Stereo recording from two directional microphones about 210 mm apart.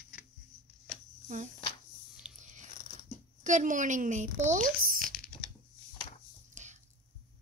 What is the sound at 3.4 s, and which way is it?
Speech, 35° right (ahead or behind).